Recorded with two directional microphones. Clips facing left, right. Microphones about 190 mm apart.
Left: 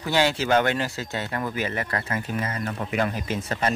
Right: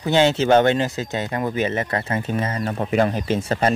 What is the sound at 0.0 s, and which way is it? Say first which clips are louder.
Speech: right 6 dB; 20° right (ahead or behind).